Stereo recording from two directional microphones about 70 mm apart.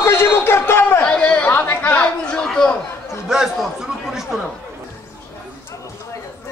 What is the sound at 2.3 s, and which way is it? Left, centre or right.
Chatter, centre.